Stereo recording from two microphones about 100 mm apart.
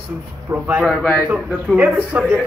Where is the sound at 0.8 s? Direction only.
5° left (ahead or behind).